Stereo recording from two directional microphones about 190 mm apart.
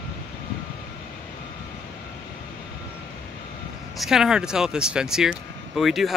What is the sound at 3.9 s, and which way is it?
Speech, centre (ahead or behind).